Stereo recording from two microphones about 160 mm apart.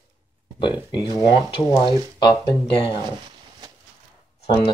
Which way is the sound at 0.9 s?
25° left (ahead or behind).